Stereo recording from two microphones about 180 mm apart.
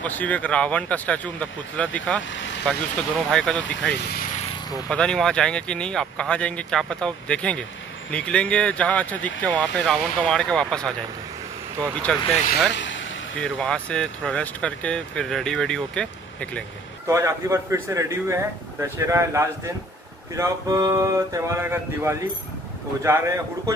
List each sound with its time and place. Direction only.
0.0 s speech: 10° left (ahead or behind)
3.3 s speech: 5° left (ahead or behind)
3.9 s speech: 55° left (ahead or behind)
4.8 s speech: 5° left (ahead or behind)
12.7 s vehicle: 90° left
13.4 s speech: 5° left (ahead or behind)
17.1 s speech: 15° right (ahead or behind)